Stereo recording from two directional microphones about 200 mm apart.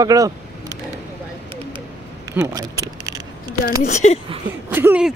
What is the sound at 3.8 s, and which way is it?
Speech, 35° left (ahead or behind).